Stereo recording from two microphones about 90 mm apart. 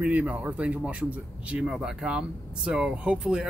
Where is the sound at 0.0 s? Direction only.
15° right (ahead or behind).